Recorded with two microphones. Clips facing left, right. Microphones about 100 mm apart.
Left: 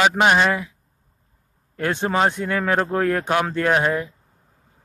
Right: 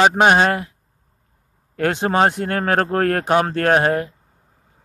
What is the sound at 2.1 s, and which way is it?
Speech, 60° right (ahead or behind).